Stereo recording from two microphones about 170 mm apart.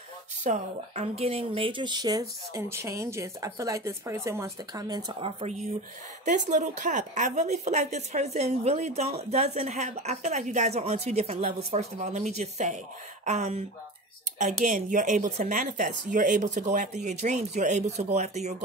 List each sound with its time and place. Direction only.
0.4 s a woman's voice: 40° right (ahead or behind); by 5.3 s 25° right (ahead or behind)
6.2 s a woman's voice: 45° right (ahead or behind)